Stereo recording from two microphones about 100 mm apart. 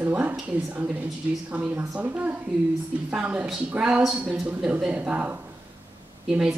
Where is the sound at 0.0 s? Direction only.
15° right (ahead or behind).